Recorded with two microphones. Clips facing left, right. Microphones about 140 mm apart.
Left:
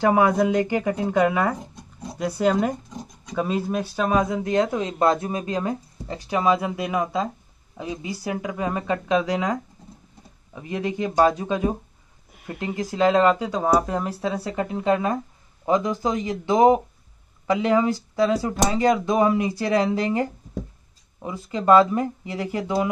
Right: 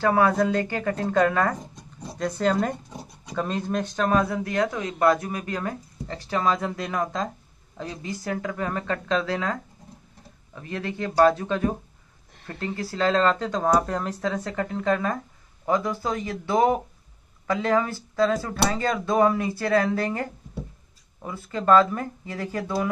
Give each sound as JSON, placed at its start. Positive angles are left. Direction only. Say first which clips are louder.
{"t": 0.0, "sound": "speech", "louder": "left 2 dB", "side_deg": 15}